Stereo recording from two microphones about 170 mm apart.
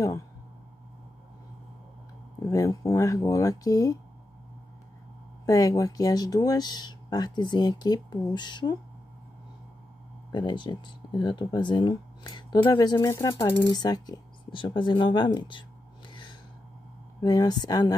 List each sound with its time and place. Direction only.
2.5 s speech: 20° left (ahead or behind)
5.4 s speech: 20° left (ahead or behind)
10.3 s speech: 25° left (ahead or behind)
16.1 s gasp: 30° left (ahead or behind)
17.2 s speech: 25° left (ahead or behind)